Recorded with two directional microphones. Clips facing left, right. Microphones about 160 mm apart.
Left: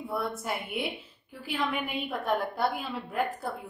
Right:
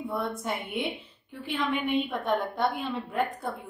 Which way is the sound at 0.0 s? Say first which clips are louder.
Right 1 dB; centre (ahead or behind).